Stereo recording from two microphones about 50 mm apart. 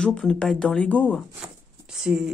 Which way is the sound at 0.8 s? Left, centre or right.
Left.